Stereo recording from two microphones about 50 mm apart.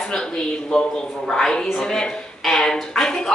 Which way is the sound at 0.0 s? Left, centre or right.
Centre.